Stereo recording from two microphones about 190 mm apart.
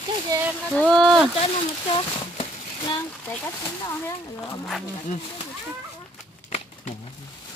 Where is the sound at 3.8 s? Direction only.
15° left (ahead or behind).